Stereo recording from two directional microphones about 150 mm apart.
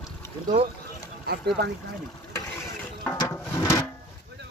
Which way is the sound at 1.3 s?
90° right.